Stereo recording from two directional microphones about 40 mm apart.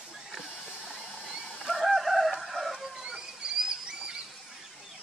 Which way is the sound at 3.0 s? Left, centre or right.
Centre.